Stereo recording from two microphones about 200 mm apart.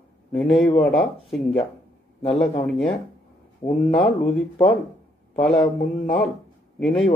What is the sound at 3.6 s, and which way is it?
Speech, 40° left (ahead or behind).